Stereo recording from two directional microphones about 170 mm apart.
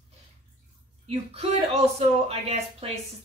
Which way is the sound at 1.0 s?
35° right (ahead or behind).